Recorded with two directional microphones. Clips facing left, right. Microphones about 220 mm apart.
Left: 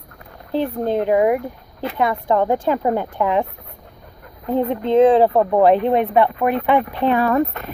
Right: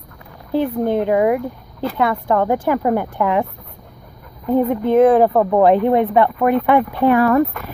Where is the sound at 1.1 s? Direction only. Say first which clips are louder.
Even; 20° left (ahead or behind).